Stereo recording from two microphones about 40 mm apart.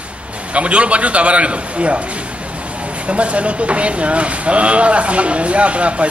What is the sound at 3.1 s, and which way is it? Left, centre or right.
A man's voice, right.